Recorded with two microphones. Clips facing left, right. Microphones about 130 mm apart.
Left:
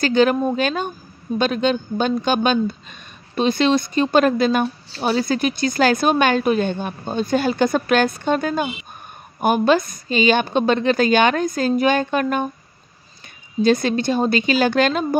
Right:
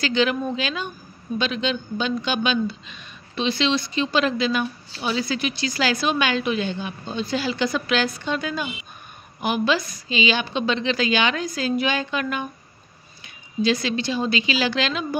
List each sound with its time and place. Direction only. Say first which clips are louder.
0.0 s speech: left 6 dB; 45° left (ahead or behind)
13.6 s speech: left 5 dB; 50° left (ahead or behind)